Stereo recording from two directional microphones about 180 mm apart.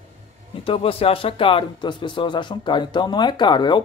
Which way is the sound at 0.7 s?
30° left (ahead or behind).